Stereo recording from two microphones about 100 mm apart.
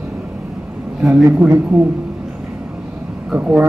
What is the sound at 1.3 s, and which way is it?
Speech, 20° right (ahead or behind).